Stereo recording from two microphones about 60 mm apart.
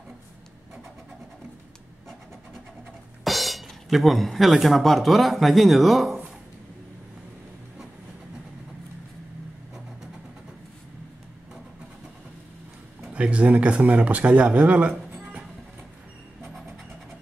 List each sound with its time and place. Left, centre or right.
3.3 s speech: centre
13.0 s speech: centre